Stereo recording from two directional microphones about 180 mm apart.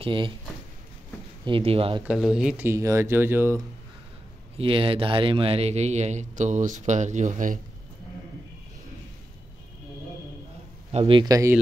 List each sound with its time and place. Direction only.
0.0 s speech: 30° right (ahead or behind)
1.4 s speech: 30° right (ahead or behind)
2.0 s speech: 5° right (ahead or behind)
4.6 s speech: 30° right (ahead or behind); by 7.6 s 45° right (ahead or behind)
10.9 s speech: 30° right (ahead or behind)